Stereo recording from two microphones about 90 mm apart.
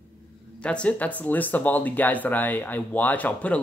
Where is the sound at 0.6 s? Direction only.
15° left (ahead or behind).